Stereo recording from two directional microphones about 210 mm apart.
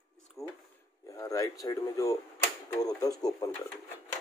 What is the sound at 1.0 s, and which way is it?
Speech, 15° left (ahead or behind).